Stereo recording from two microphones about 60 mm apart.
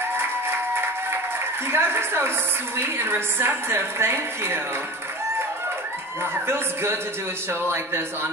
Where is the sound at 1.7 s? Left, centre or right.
Right.